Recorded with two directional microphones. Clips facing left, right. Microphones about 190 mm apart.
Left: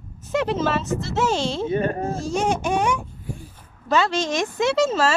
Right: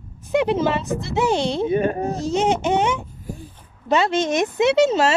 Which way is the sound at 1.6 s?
15° right (ahead or behind).